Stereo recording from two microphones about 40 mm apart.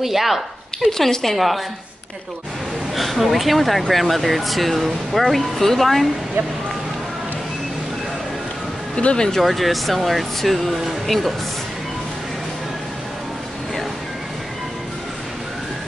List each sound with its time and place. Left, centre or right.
0.0 s speech: centre
2.9 s speech: centre
8.9 s speech: left
9.3 s speech: centre